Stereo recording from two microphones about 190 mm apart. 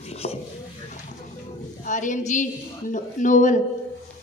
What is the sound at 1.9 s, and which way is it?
A woman's voice, 40° left (ahead or behind).